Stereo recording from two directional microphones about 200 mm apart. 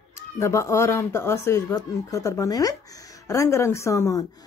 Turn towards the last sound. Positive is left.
turn(degrees=15)  # may be behind; listen again after turning